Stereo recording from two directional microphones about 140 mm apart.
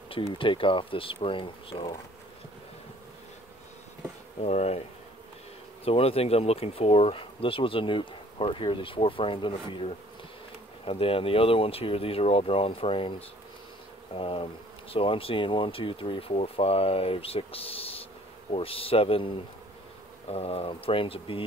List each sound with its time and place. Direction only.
0.1 s speech: 40° left (ahead or behind)
4.4 s speech: 50° left (ahead or behind)
5.9 s speech: 45° left (ahead or behind)